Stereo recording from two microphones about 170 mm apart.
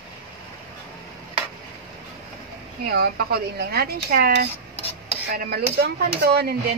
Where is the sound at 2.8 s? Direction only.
70° right (ahead or behind).